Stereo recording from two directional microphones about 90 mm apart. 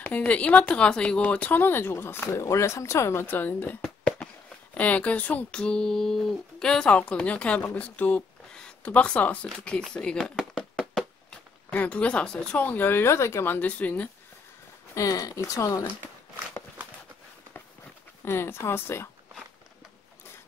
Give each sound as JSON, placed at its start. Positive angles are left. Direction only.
{"t": 0.0, "sound": "speech", "side_deg": 20}
{"t": 4.7, "sound": "speech", "side_deg": 15}
{"t": 10.6, "sound": "a sound", "side_deg": 5}
{"t": 11.7, "sound": "speech", "side_deg": 15}
{"t": 15.0, "sound": "speech", "side_deg": 40}
{"t": 18.2, "sound": "speech", "side_deg": 25}